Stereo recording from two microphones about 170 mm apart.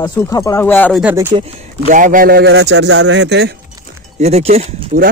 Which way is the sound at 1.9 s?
50° right (ahead or behind).